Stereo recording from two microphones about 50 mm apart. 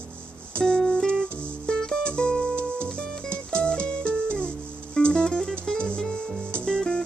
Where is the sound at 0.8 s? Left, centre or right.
Centre.